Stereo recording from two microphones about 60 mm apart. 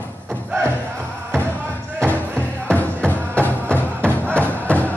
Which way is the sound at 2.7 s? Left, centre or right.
Left.